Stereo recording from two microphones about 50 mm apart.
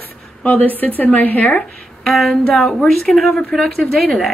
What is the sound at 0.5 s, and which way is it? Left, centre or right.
A woman's voice, left.